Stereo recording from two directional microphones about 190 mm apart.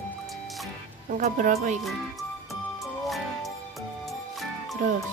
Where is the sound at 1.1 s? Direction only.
40° right (ahead or behind).